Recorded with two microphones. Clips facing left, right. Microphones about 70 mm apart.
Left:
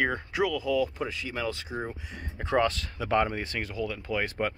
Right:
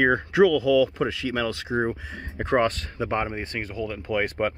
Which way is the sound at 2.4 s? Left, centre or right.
Right.